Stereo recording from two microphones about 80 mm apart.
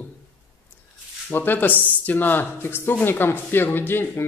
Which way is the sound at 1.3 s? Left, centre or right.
Left.